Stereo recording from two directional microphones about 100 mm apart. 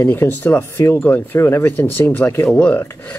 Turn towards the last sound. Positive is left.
turn(degrees=20)  # may be behind; listen again after turning